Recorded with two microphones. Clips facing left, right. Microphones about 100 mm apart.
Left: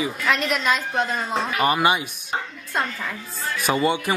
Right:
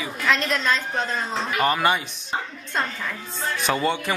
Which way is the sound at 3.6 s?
5° left (ahead or behind).